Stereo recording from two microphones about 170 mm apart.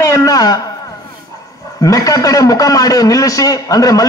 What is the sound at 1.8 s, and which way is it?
A man's voice, 20° left (ahead or behind).